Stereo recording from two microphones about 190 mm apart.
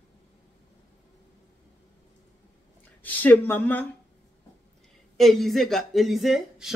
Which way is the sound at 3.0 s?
10° left (ahead or behind).